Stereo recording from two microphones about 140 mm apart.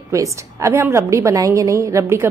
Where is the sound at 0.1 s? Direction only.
20° right (ahead or behind).